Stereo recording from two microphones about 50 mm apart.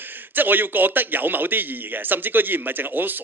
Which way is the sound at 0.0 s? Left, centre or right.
Right.